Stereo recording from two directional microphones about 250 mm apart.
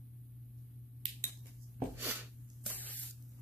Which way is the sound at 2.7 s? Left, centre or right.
Centre.